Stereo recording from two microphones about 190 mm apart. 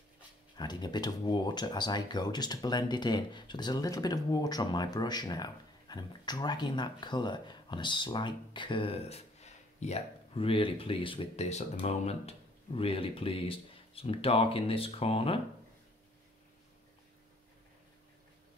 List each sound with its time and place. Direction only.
0.6 s speech: 20° left (ahead or behind)